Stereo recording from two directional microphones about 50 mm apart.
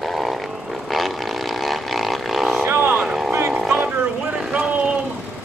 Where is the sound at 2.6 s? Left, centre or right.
Right.